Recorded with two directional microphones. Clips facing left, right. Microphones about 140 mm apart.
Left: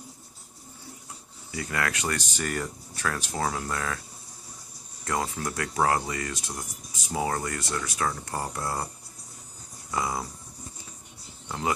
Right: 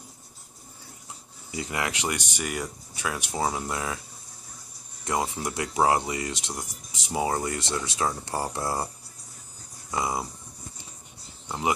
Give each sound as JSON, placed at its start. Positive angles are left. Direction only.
{"t": 1.5, "sound": "speech", "side_deg": -20}
{"t": 5.0, "sound": "speech", "side_deg": -20}
{"t": 9.8, "sound": "speech", "side_deg": -20}
{"t": 11.4, "sound": "speech", "side_deg": -15}